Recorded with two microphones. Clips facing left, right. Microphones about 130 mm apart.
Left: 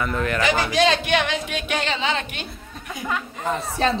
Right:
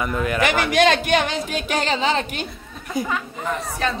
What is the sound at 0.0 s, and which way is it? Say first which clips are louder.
Speech: right 1 dB; 10° right (ahead or behind).